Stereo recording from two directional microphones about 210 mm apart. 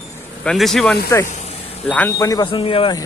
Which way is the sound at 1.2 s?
35° left (ahead or behind).